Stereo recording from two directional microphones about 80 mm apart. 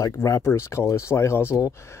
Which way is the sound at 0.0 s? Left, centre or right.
Left.